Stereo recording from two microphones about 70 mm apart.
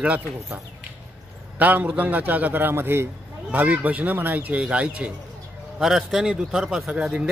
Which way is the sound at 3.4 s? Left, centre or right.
Right.